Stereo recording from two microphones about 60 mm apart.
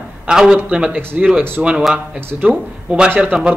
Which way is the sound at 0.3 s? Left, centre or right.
Centre.